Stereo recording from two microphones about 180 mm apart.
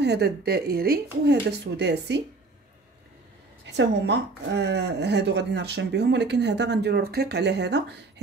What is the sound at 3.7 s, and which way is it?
A woman's voice, 70° right (ahead or behind).